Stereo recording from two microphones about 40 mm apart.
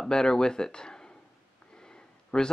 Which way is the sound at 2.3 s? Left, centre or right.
Left.